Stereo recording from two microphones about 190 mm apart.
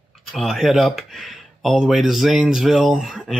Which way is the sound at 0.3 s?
Centre (ahead or behind).